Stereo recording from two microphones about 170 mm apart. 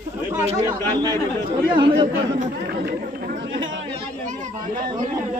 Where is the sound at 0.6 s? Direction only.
20° right (ahead or behind).